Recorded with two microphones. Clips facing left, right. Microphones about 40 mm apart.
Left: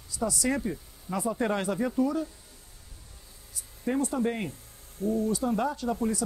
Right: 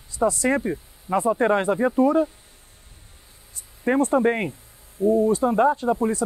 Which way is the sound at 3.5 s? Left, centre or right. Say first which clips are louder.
Right 8 dB; right.